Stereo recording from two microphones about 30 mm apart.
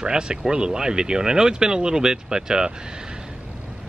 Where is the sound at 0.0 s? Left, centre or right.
Right.